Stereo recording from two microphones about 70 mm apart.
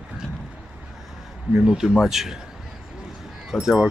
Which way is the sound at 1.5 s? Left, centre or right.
Centre.